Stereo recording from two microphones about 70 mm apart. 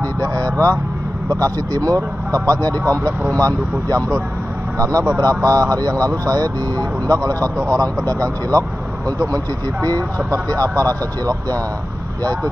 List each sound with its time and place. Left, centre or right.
0.2 s speech: right